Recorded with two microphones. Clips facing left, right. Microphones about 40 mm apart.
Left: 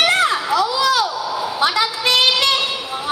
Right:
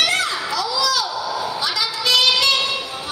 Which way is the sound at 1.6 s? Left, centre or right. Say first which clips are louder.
Left 5 dB; left.